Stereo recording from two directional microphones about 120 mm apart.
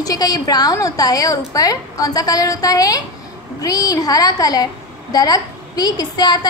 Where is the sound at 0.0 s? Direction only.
30° left (ahead or behind).